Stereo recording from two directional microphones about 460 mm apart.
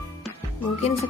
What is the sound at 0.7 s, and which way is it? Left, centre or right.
Music, centre.